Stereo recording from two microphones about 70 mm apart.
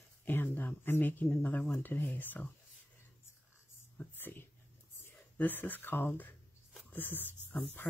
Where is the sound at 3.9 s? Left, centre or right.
Left.